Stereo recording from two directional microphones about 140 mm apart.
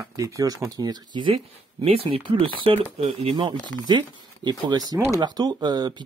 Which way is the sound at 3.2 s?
40° right (ahead or behind).